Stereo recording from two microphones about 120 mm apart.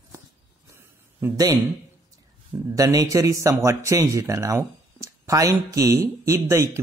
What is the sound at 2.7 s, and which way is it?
Speech, 30° right (ahead or behind).